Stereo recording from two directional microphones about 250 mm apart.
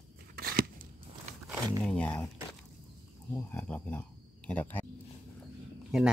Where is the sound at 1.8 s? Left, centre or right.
Centre.